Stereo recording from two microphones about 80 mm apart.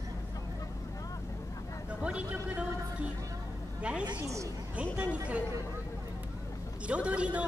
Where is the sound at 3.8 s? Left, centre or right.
Centre.